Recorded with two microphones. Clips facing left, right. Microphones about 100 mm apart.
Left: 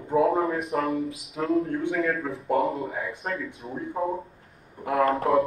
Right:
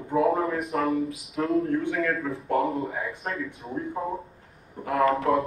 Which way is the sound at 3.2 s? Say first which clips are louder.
Even; centre (ahead or behind).